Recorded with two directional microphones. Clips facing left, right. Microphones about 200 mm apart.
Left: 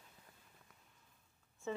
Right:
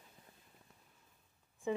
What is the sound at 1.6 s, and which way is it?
Speech, 15° right (ahead or behind).